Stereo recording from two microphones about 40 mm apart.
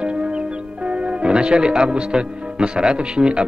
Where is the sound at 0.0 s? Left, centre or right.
Right.